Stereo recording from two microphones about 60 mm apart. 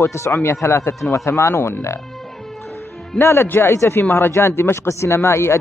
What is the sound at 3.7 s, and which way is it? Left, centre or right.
Speech, left.